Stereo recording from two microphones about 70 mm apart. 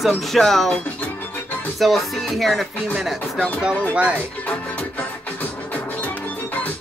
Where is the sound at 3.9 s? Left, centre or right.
Centre.